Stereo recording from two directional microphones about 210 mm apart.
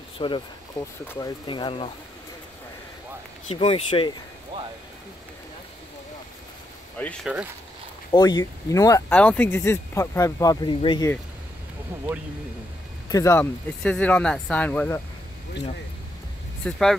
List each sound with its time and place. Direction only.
0.2 s speech: 25° left (ahead or behind)
3.4 s speech: 25° left (ahead or behind)
7.0 s speech: 10° left (ahead or behind)
8.1 s speech: 20° left (ahead or behind)
13.1 s speech: 15° left (ahead or behind)
16.6 s speech: centre (ahead or behind)